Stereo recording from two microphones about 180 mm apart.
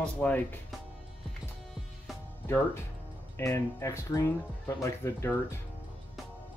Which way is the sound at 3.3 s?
15° left (ahead or behind).